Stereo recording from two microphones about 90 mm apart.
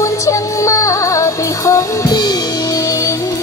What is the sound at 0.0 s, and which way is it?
Music, 35° left (ahead or behind).